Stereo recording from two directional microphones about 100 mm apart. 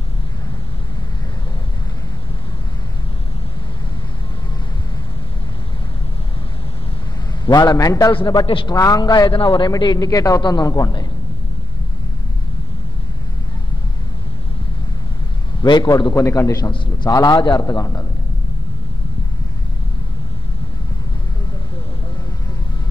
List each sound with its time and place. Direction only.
7.4 s a man's voice: 40° left (ahead or behind)
9.3 s a man's voice: 55° left (ahead or behind)
9.7 s a man's voice: 45° left (ahead or behind)
15.6 s a man's voice: 45° left (ahead or behind)
16.2 s a man's voice: 30° left (ahead or behind)
16.7 s a man's voice: 55° left (ahead or behind)
17.1 s a man's voice: 45° left (ahead or behind)
17.6 s a man's voice: 35° left (ahead or behind)